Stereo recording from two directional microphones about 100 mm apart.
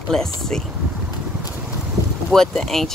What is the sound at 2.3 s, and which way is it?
Speech, 5° left (ahead or behind).